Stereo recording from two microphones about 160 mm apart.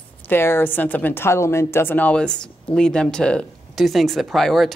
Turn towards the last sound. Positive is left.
turn(degrees=0)  # may be behind; listen again after turning